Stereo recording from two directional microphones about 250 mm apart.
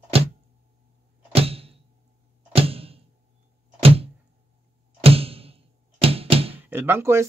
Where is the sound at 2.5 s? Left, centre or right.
Right.